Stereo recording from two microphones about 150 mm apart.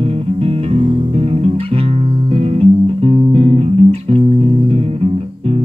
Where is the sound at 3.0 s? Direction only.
40° right (ahead or behind).